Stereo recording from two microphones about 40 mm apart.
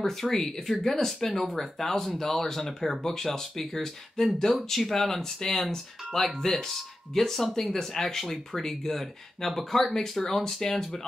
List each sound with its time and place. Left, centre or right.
0.0 s speech: centre